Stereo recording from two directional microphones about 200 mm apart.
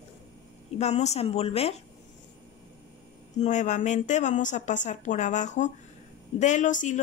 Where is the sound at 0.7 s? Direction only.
35° left (ahead or behind).